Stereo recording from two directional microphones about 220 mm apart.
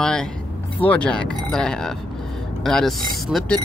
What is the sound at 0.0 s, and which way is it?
Vehicle, 5° left (ahead or behind).